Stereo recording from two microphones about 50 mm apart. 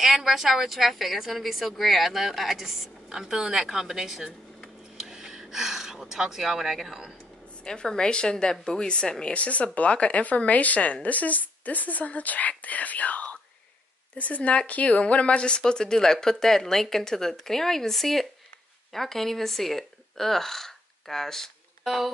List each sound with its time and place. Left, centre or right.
0.0 s a woman's voice: centre
7.6 s a woman's voice: centre